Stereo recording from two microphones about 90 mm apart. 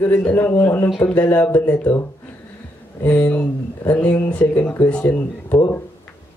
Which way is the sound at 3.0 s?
20° left (ahead or behind).